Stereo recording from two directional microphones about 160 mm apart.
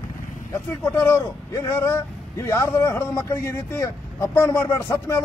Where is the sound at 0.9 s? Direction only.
15° left (ahead or behind).